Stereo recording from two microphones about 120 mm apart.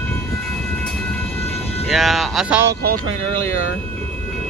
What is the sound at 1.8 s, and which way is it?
Speech, centre (ahead or behind).